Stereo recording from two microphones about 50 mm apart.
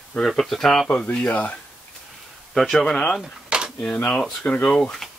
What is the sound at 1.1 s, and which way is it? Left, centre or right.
Speech, left.